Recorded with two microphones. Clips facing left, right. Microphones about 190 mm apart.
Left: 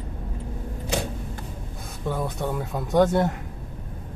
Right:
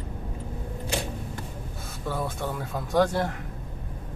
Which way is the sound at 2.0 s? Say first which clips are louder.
Left 3 dB; 20° left (ahead or behind).